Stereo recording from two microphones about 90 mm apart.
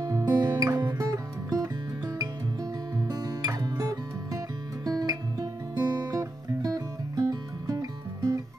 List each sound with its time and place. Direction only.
0.0 s music: 45° right (ahead or behind)
3.1 s music: 45° right (ahead or behind)
4.8 s guitar: 45° right (ahead or behind)